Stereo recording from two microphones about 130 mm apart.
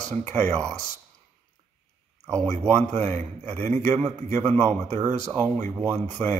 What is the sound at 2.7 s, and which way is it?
A man's voice, 60° right (ahead or behind).